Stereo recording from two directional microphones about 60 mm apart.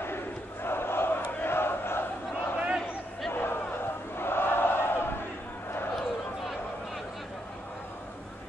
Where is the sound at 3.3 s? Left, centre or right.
Left.